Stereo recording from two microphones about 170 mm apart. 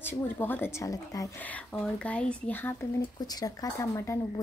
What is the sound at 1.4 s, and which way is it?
A woman's voice, 10° left (ahead or behind).